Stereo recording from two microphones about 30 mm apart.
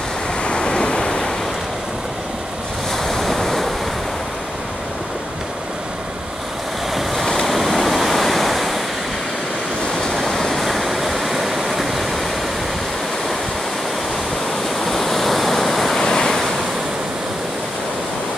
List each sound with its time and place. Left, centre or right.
0.4 s waves: left
3.0 s waves: centre
7.4 s waves: centre
10.1 s vehicle: centre
14.9 s waves: centre
16.0 s waves: centre